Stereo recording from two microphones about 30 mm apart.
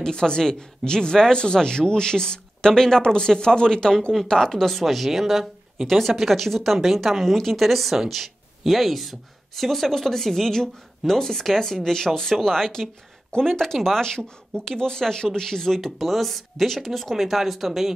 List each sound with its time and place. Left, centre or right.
0.0 s speech: left
4.6 s speech: centre
4.8 s speech: centre
5.9 s a woman's voice: centre
15.8 s a woman's voice: centre
17.1 s speech: centre